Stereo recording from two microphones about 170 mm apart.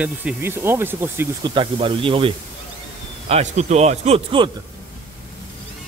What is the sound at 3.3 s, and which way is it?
Speech, 45° right (ahead or behind).